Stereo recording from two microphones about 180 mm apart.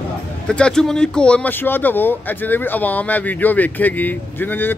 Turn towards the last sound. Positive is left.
turn(degrees=10)  # may be behind; listen again after turning